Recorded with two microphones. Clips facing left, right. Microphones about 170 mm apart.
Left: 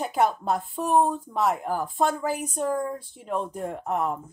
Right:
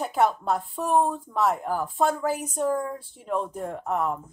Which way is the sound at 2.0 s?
Centre (ahead or behind).